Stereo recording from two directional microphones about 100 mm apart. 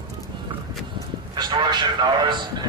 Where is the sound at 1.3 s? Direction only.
50° right (ahead or behind).